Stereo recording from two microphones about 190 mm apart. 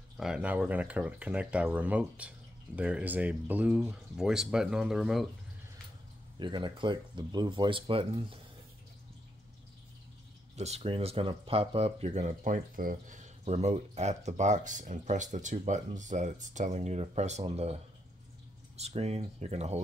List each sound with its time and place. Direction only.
0.2 s speech: 5° right (ahead or behind)
6.4 s speech: 25° right (ahead or behind)
10.5 s speech: 35° right (ahead or behind)
18.8 s speech: 35° right (ahead or behind)